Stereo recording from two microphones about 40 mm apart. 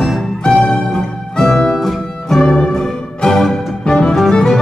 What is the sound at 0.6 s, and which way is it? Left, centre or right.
Music, centre.